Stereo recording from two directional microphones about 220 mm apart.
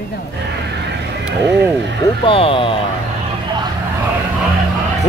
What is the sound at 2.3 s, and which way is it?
Speech, 25° left (ahead or behind).